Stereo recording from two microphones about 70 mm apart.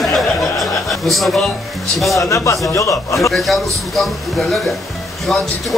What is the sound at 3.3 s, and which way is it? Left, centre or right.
Speech, centre.